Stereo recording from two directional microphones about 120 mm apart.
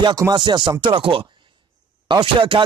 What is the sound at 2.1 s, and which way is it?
Speech, 40° right (ahead or behind).